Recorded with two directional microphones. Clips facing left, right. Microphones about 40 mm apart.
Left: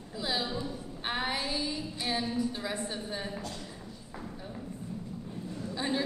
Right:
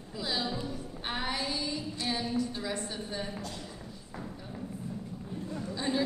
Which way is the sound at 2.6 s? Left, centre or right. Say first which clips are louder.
Left 1 dB; centre.